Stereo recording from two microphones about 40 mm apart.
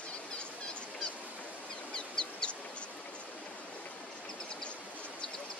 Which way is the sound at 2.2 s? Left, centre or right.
Centre.